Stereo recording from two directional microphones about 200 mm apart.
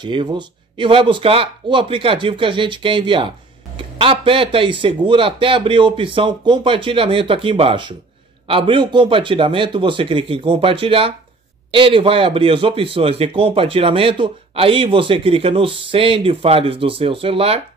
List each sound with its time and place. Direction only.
0.0 s speech: 20° right (ahead or behind)